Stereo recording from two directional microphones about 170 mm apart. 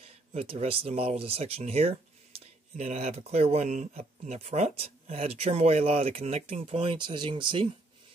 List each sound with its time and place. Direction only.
0.3 s speech: 35° right (ahead or behind)